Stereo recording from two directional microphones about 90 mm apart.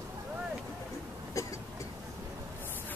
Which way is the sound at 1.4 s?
35° left (ahead or behind).